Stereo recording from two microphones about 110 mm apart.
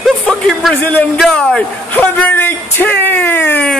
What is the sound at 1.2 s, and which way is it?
Speech, 5° left (ahead or behind).